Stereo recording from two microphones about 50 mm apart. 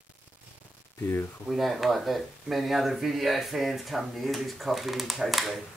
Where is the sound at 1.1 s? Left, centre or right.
Left.